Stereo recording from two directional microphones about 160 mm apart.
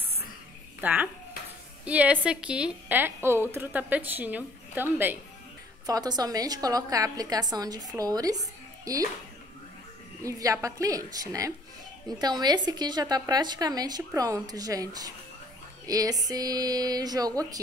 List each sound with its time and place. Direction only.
0.7 s a child's voice: 10° right (ahead or behind)
5.9 s a woman's voice: 25° right (ahead or behind)
10.2 s a woman's voice: 20° right (ahead or behind)